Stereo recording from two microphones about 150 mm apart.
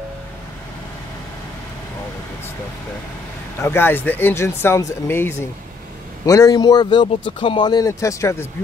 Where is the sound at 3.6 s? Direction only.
15° left (ahead or behind).